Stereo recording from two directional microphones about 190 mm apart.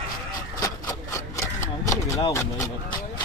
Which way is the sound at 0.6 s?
15° left (ahead or behind).